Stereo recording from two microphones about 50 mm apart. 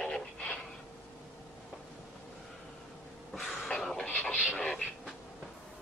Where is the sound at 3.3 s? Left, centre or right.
Centre.